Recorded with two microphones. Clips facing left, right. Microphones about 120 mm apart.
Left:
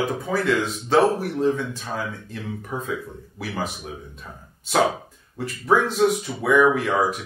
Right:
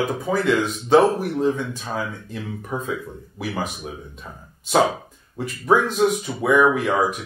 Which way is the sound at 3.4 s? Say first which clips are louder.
Right 2 dB; 15° right (ahead or behind).